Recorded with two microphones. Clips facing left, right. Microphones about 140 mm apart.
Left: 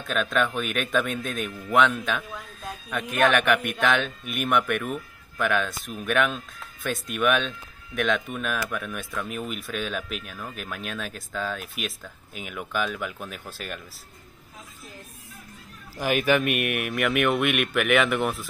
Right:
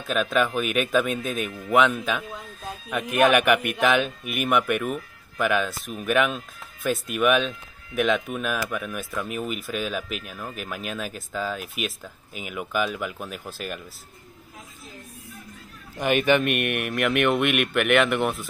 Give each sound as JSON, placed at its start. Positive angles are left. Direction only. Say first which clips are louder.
{"t": 0.0, "sound": "speech", "louder": "right 2 dB", "side_deg": -5}
{"t": 2.2, "sound": "a sound", "louder": "right 1 dB", "side_deg": -25}
{"t": 2.9, "sound": "speech", "louder": "right 3 dB", "side_deg": -5}
{"t": 16.0, "sound": "speech", "louder": "right 2 dB", "side_deg": 0}